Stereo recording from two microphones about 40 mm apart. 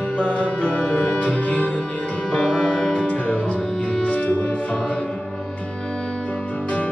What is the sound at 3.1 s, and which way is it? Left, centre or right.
Music, left.